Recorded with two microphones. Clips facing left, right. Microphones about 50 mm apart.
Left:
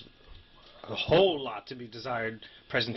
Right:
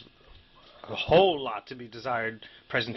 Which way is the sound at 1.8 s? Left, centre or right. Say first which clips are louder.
Right 4 dB; right.